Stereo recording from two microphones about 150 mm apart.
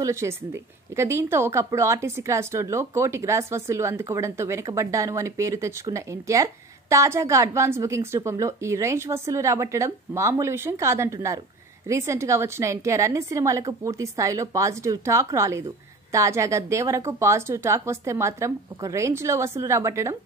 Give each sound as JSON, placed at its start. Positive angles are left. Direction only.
{"t": 0.0, "sound": "speech", "side_deg": -20}